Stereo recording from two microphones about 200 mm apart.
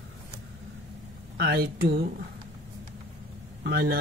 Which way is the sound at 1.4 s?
50° right (ahead or behind).